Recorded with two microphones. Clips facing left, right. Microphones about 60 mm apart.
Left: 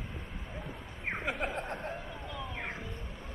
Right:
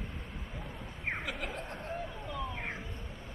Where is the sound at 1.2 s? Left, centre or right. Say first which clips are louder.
Left 4 dB; left.